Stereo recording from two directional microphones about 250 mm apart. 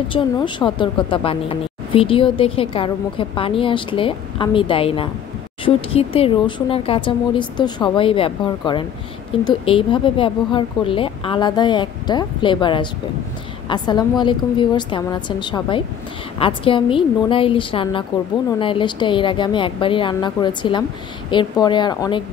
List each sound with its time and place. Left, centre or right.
0.1 s a woman's voice: centre